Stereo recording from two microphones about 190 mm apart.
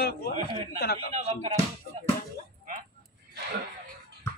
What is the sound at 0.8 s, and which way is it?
Speech, 55° left (ahead or behind).